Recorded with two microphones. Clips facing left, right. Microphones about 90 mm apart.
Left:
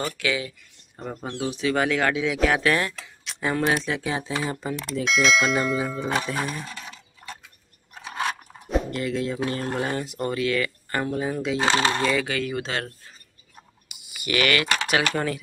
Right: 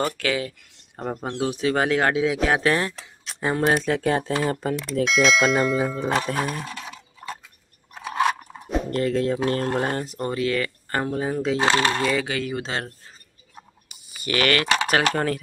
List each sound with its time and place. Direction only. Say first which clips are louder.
0.0 s speech: right 3 dB; 45° right (ahead or behind)
1.1 s speech: right 1 dB; 20° right (ahead or behind)
1.4 s speech: right 1 dB; 45° right (ahead or behind)
5.0 s speech: right 2 dB; centre (ahead or behind)
6.0 s speech: right 3 dB; 40° right (ahead or behind)
6.6 s mechanisms: right 3 dB; 5° right (ahead or behind)
8.9 s speech: right 5 dB; 45° right (ahead or behind)
11.7 s speech: right 1 dB; 20° left (ahead or behind)
12.1 s speech: even; 25° right (ahead or behind)
13.8 s speech: right 1 dB; 35° right (ahead or behind)